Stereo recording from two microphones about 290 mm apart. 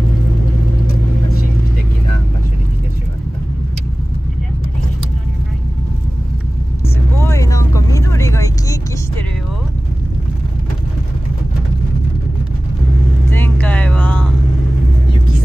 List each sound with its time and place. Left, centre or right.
7.2 s vehicle: centre
13.3 s vehicle: centre